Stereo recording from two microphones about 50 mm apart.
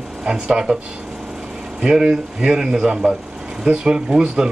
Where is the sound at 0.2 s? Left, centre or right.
Centre.